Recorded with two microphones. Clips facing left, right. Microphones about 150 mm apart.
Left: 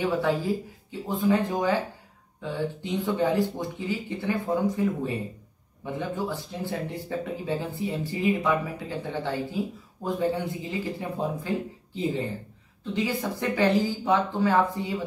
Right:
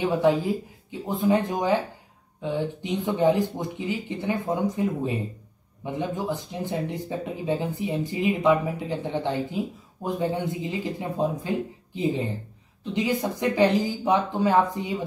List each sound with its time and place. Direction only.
0.0 s speech: 20° right (ahead or behind)